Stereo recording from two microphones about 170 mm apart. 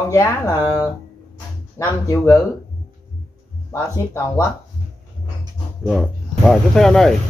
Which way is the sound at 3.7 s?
15° left (ahead or behind).